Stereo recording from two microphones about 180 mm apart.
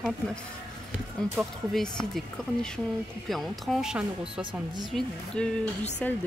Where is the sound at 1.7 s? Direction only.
Centre (ahead or behind).